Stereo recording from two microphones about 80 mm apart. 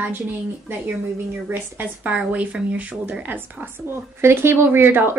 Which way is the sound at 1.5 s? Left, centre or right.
Right.